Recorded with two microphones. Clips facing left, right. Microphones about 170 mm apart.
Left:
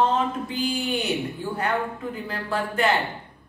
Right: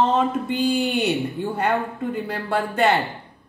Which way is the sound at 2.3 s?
65° right (ahead or behind).